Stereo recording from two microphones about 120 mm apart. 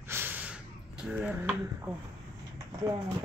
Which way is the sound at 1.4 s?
20° right (ahead or behind).